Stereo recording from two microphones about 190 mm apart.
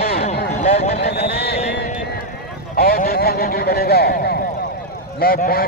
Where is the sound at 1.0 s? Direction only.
55° left (ahead or behind).